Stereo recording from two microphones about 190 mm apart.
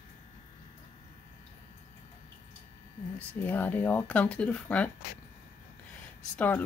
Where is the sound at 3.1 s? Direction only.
10° left (ahead or behind).